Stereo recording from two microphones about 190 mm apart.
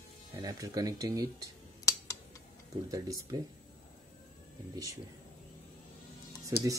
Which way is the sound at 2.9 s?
20° right (ahead or behind).